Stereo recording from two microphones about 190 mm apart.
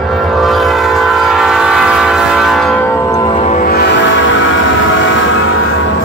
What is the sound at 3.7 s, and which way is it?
Train, 60° left (ahead or behind).